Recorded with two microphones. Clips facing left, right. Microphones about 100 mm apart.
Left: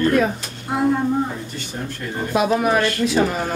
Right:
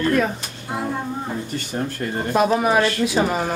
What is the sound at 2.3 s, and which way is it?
Speech, centre (ahead or behind).